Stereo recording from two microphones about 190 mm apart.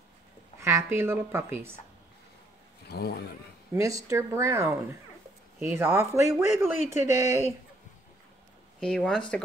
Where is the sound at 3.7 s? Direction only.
15° right (ahead or behind).